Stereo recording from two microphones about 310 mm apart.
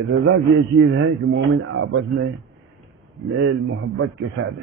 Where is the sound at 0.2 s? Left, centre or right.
Right.